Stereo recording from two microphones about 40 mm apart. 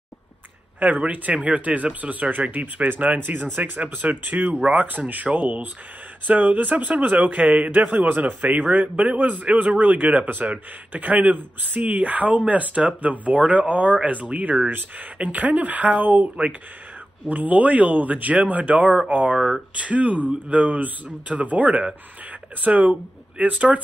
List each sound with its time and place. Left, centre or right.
0.7 s speech: right
17.3 s speech: right
19.3 s speech: centre
19.8 s speech: right